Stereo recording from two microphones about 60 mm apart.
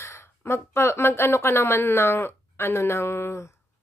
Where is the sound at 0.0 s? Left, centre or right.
Left.